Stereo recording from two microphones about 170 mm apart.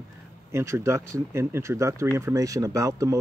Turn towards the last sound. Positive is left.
turn(degrees=-20)  # may be behind; listen again after turning